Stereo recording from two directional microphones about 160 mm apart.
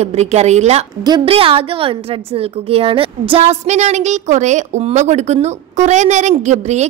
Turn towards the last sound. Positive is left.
turn(degrees=-45)  # may be behind; listen again after turning